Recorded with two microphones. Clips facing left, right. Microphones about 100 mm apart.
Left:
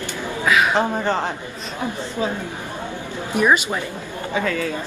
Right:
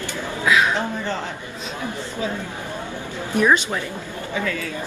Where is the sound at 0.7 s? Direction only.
55° left (ahead or behind).